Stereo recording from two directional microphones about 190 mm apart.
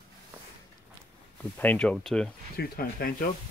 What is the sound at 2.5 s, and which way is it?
Speech, 55° left (ahead or behind).